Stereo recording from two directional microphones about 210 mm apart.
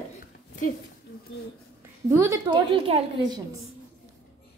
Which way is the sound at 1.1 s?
50° left (ahead or behind).